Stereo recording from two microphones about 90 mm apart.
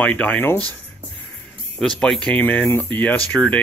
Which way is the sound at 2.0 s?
10° left (ahead or behind).